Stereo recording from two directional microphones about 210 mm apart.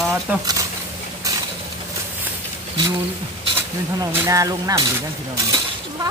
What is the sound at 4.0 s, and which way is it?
Speech, 15° right (ahead or behind).